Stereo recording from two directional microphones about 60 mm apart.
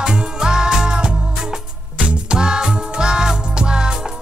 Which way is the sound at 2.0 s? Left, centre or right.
Centre.